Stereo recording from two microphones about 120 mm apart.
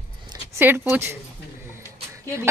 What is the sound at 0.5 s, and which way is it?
Speech, 15° right (ahead or behind).